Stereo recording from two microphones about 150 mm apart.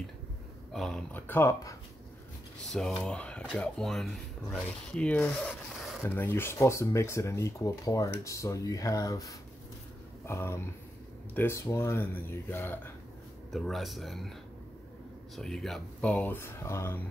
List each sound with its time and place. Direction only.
0.7 s speech: 5° left (ahead or behind)
3.0 s speech: 5° left (ahead or behind)
6.0 s speech: 15° left (ahead or behind)
13.5 s speech: centre (ahead or behind)
15.3 s speech: centre (ahead or behind); by 17.0 s 15° left (ahead or behind)